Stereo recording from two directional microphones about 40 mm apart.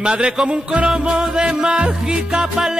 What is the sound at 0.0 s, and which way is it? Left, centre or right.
Music, right.